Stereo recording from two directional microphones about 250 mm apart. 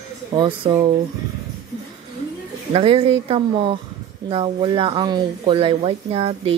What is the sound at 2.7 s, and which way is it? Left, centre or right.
Speech, right.